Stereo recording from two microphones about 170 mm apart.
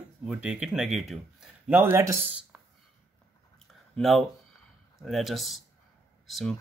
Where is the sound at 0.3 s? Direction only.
5° right (ahead or behind).